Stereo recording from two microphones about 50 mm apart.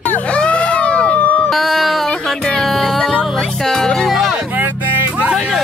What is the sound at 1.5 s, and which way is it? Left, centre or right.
Speech, centre.